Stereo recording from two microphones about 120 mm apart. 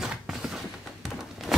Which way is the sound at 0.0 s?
5° right (ahead or behind).